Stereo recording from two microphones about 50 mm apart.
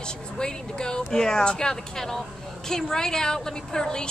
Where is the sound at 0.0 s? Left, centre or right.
Centre.